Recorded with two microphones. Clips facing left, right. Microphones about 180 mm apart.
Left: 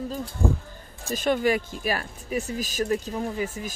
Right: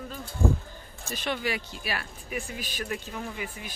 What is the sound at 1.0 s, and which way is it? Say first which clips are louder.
Speech: left 8 dB; 45° left (ahead or behind).